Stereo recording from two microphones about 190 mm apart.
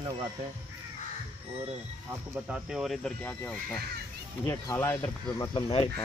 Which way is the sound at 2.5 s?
Centre (ahead or behind).